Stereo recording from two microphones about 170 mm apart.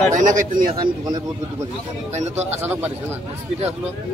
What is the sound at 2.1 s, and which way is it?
Speech, 40° right (ahead or behind).